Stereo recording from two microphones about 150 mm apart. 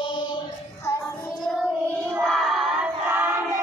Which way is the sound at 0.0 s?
30° left (ahead or behind).